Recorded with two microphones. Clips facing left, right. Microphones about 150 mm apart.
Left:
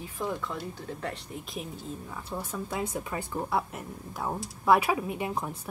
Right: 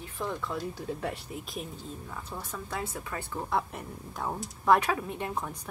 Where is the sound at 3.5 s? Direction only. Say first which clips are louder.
Right 3 dB; 5° left (ahead or behind).